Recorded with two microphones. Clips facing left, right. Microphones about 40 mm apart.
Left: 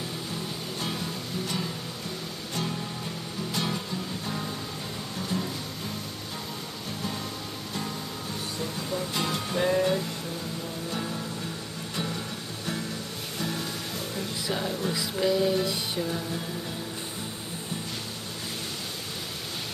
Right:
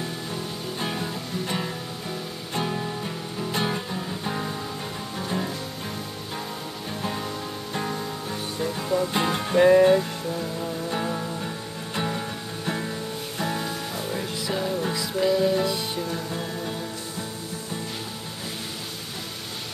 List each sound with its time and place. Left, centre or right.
0.7 s music: right
7.7 s music: right
13.4 s music: centre
15.0 s music: centre
16.3 s music: centre